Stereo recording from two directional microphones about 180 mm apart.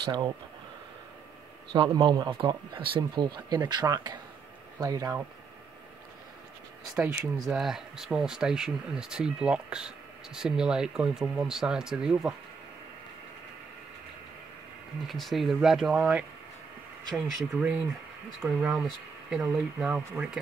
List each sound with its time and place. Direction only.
1.7 s speech: 30° right (ahead or behind)
7.0 s speech: 15° right (ahead or behind)
7.4 s speech: centre (ahead or behind)
15.0 s speech: centre (ahead or behind)